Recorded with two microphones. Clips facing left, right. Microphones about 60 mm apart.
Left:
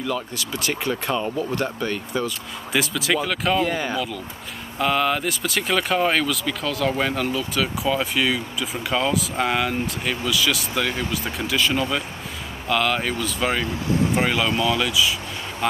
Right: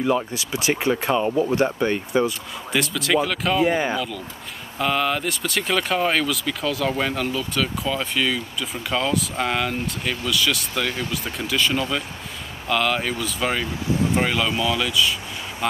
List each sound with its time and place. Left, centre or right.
0.0 s speech: right
2.7 s speech: centre
3.6 s speech: centre
3.9 s speech: centre